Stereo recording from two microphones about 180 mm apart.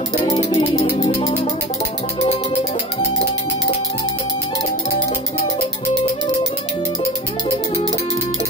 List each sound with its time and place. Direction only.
0.1 s music: 30° left (ahead or behind)